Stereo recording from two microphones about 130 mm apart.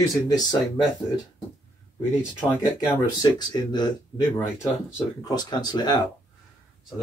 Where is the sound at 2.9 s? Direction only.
30° left (ahead or behind).